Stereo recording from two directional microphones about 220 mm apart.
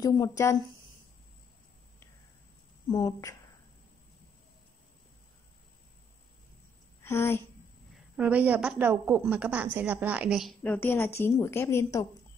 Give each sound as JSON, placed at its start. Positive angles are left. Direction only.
{"t": 0.0, "sound": "a woman's voice", "side_deg": 15}
{"t": 2.9, "sound": "a woman's voice", "side_deg": 15}
{"t": 7.0, "sound": "speech", "side_deg": 10}
{"t": 8.2, "sound": "a woman's voice", "side_deg": -5}